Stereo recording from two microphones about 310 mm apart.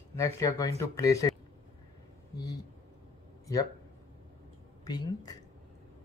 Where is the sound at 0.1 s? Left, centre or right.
Centre.